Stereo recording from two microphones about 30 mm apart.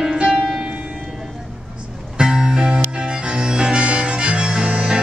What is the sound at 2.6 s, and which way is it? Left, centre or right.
Harmonica, right.